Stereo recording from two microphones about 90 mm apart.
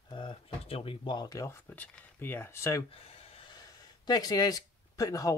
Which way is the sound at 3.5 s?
45° left (ahead or behind).